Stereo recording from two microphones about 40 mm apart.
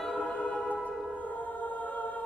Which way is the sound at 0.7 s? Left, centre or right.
Left.